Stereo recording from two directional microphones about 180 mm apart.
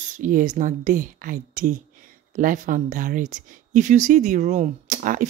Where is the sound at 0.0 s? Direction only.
45° right (ahead or behind).